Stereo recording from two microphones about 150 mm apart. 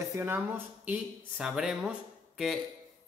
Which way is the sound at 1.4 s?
5° right (ahead or behind).